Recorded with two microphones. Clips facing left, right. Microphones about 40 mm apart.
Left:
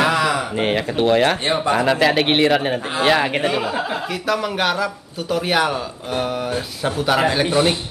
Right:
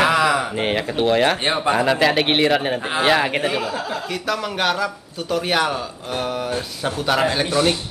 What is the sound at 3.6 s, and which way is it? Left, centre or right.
Speech, left.